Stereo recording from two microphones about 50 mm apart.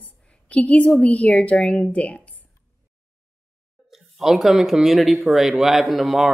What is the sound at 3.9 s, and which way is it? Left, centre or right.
Speech, centre.